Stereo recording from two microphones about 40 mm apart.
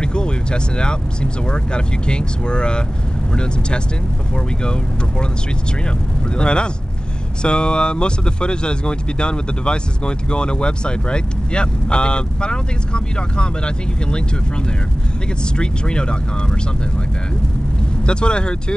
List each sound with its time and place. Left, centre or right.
0.0 s speech: left
5.9 s speech: left
15.5 s speech: left
18.0 s speech: left